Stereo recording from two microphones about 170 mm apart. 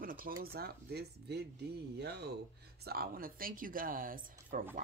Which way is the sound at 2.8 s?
65° right (ahead or behind).